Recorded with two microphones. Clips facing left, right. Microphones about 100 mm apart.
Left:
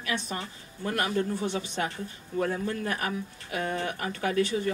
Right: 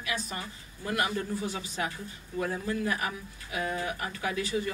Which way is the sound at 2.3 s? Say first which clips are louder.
Left 2 dB; 45° left (ahead or behind).